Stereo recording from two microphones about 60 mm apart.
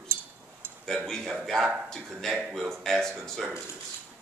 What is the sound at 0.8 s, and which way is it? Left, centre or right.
Speech, centre.